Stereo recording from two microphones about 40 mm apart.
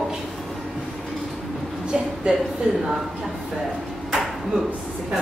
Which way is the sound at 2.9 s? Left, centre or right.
Centre.